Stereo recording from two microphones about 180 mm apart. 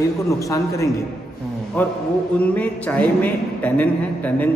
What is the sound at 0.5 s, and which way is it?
A man's voice, 15° left (ahead or behind).